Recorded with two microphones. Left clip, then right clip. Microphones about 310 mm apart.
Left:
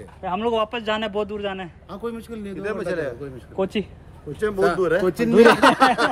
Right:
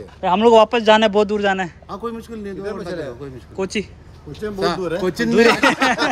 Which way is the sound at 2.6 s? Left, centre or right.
Left.